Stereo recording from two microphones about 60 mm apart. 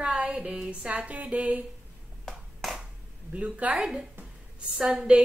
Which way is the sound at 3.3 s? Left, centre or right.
Right.